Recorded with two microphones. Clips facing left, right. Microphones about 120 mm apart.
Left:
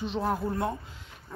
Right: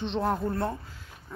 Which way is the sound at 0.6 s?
20° left (ahead or behind).